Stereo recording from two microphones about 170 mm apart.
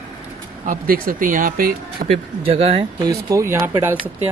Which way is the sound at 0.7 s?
55° right (ahead or behind).